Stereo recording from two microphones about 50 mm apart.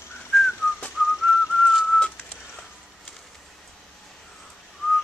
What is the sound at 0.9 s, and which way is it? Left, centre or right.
Whistling, centre.